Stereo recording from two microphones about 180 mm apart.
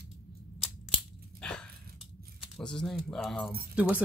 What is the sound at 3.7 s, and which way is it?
Speech, 10° right (ahead or behind).